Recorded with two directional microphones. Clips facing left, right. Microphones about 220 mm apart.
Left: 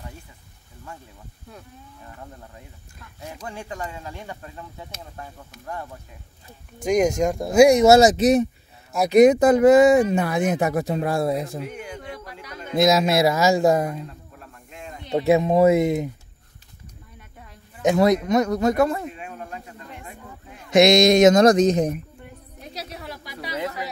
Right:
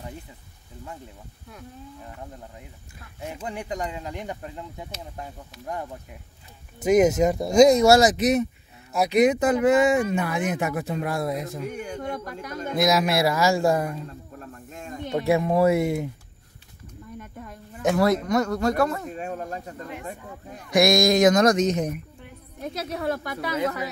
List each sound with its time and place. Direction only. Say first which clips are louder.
3.2 s speech: right 2 dB; 20° right (ahead or behind)
6.8 s speech: right 2 dB; 5° right (ahead or behind)
7.6 s speech: left 3 dB; 15° left (ahead or behind)
9.0 s speech: left 6 dB; 45° left (ahead or behind)
11.6 s speech: right 3 dB; 45° right (ahead or behind)
12.7 s speech: left 4 dB; 25° left (ahead or behind)
14.4 s snake: even; 45° right (ahead or behind)
15.1 s speech: left 4 dB; 20° left (ahead or behind)
17.2 s a sound: right 6 dB; 50° right (ahead or behind)
17.8 s speech: left 3 dB; 20° left (ahead or behind)
19.1 s snake: right 5 dB; 40° right (ahead or behind)
20.7 s speech: left 4 dB; 20° left (ahead or behind)
22.6 s a woman's voice: right 7 dB; 50° right (ahead or behind)